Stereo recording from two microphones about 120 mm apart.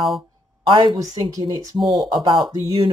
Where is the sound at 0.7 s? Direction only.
45° right (ahead or behind).